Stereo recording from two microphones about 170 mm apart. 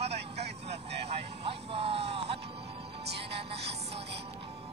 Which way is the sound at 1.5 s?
35° right (ahead or behind).